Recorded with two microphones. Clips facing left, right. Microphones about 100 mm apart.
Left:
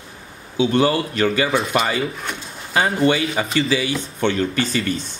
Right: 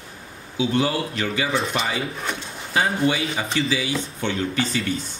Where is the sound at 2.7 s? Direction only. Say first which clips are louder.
Left 4 dB; 65° left (ahead or behind).